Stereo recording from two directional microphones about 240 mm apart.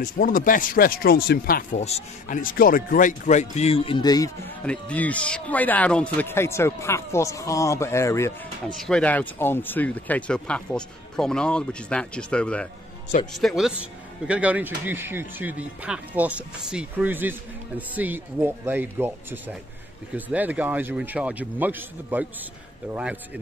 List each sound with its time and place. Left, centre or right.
0.0 s speech: left; by 4.3 s centre
4.6 s speech: centre